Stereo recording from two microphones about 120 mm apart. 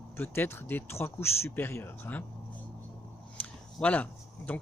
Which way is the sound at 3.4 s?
10° left (ahead or behind).